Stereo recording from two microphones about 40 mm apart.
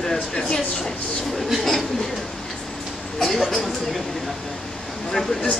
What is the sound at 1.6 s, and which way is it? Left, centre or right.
Speech, centre.